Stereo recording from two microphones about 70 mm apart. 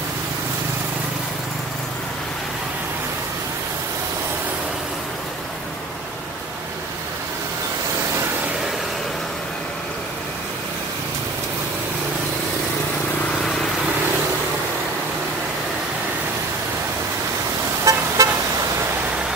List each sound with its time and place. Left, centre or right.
13.4 s vehicle: centre
17.8 s vehicle: right